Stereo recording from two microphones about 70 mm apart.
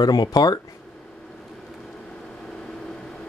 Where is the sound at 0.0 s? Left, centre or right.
Left.